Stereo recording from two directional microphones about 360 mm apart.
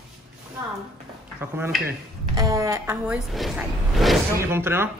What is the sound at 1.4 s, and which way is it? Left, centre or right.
Speech, centre.